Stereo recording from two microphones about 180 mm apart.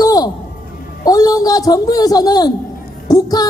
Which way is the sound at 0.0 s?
20° left (ahead or behind).